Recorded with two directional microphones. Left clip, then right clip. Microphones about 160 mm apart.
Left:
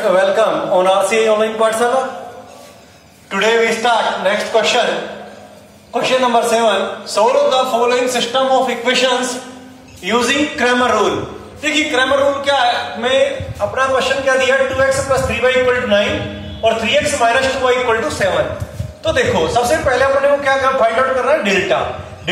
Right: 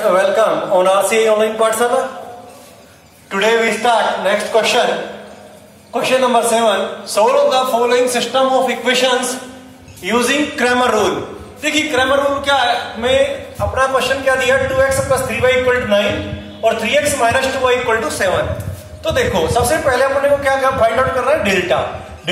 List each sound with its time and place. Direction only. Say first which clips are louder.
0.0 s a man's voice: even; centre (ahead or behind)
3.3 s a man's voice: even; centre (ahead or behind); by 4.8 s 20° right (ahead or behind)
5.9 s a man's voice: even; 20° right (ahead or behind)